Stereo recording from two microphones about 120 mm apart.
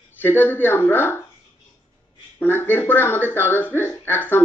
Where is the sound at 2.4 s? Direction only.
15° left (ahead or behind).